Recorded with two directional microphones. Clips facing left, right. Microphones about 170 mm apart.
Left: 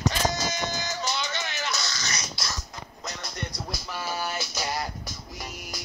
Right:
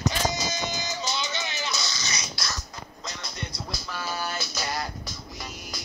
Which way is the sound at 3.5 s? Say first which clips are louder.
Left 1 dB; 10° left (ahead or behind).